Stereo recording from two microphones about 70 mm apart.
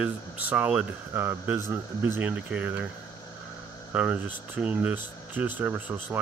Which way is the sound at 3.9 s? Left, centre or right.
Right.